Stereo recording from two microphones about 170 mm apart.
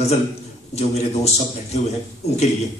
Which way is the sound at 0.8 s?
40° left (ahead or behind).